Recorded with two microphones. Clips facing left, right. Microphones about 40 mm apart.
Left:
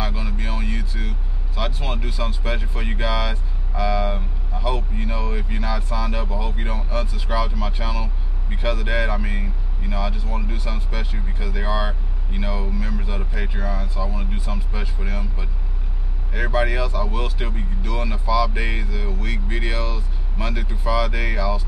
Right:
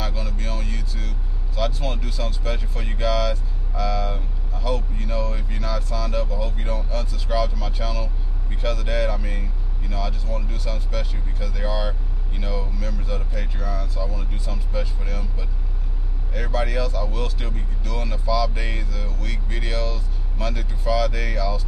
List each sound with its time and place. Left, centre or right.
0.0 s speech: centre